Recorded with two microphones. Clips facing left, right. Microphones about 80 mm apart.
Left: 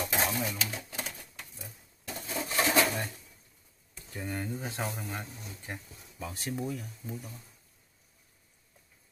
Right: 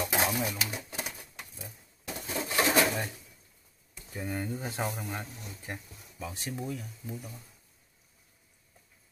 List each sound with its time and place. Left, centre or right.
0.1 s pigeon: centre
3.9 s speech: centre